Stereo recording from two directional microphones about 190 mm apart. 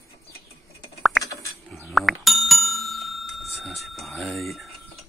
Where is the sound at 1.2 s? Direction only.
15° left (ahead or behind).